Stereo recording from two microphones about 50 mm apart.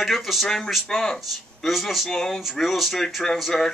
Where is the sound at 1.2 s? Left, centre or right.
Centre.